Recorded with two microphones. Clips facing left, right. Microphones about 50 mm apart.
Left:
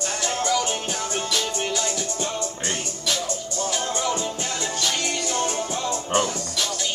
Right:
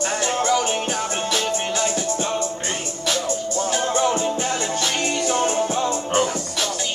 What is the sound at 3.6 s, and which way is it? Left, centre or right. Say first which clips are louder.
Music: right 5 dB; right.